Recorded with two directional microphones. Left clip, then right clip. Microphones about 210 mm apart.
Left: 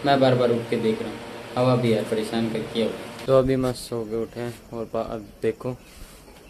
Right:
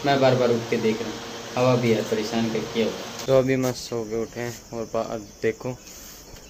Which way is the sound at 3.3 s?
15° left (ahead or behind).